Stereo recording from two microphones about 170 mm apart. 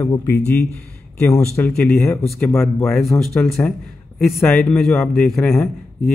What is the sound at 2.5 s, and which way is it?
A man's voice, centre (ahead or behind).